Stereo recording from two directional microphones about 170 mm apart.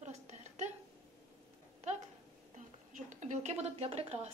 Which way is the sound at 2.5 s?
45° right (ahead or behind).